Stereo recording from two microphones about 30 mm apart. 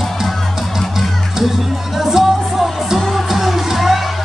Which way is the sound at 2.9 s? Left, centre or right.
Centre.